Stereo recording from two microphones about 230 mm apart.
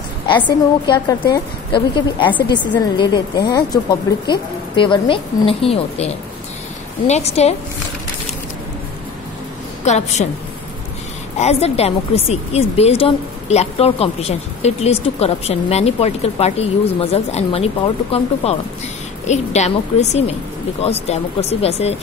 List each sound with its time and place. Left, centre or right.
0.5 s a woman's voice: centre
9.8 s a woman's voice: left
11.3 s a woman's voice: left